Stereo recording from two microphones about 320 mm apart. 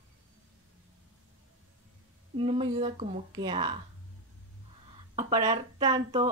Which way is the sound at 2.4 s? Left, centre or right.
Centre.